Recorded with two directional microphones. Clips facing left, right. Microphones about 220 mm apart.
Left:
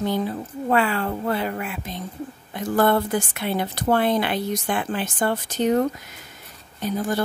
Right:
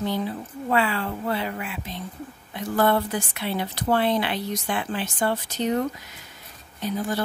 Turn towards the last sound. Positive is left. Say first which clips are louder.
# left 2 dB
turn(degrees=45)  # may be behind; listen again after turning